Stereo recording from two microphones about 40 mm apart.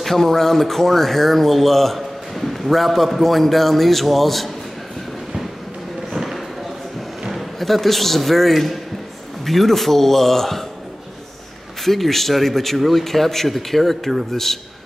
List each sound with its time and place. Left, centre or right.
0.0 s speech: centre
7.2 s a man's voice: centre
11.8 s speech: centre